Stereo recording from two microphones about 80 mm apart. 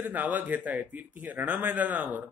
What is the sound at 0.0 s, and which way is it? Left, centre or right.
Speech, right.